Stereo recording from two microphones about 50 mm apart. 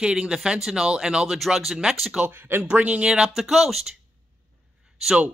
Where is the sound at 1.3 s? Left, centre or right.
Centre.